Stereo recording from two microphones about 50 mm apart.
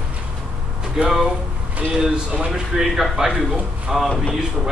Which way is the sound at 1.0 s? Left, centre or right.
Centre.